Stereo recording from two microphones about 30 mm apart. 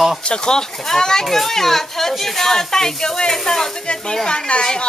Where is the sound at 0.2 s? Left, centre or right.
Left.